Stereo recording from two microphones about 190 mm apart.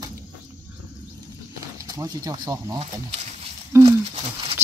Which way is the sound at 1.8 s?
20° right (ahead or behind).